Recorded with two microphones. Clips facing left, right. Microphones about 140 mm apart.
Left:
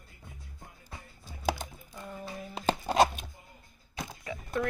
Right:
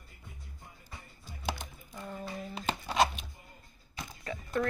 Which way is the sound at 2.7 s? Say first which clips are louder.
Left 4 dB; 45° left (ahead or behind).